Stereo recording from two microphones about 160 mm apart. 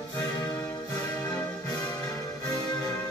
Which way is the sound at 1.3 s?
25° left (ahead or behind).